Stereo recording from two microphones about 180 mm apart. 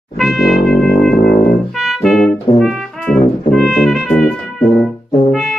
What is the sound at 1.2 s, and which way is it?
Music, 50° left (ahead or behind).